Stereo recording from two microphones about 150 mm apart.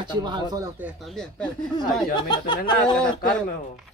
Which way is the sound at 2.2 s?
30° left (ahead or behind).